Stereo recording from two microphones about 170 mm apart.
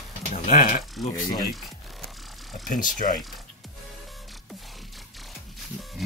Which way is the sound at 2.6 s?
50° left (ahead or behind).